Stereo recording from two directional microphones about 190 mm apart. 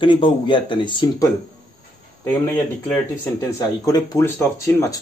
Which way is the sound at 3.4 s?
15° left (ahead or behind).